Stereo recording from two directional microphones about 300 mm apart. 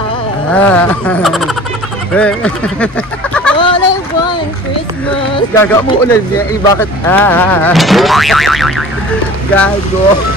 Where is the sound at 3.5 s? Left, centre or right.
Centre.